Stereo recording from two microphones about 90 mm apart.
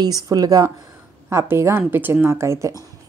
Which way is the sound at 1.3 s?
30° right (ahead or behind).